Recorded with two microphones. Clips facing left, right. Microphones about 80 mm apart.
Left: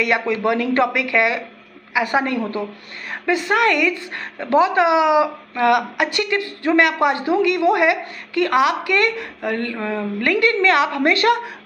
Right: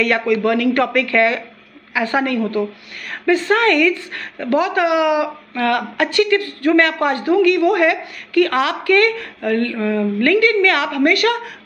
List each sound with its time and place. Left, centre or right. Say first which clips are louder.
0.0 s a woman's voice: right 3 dB; left